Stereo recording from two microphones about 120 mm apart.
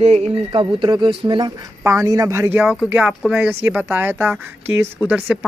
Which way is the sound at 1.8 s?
25° right (ahead or behind).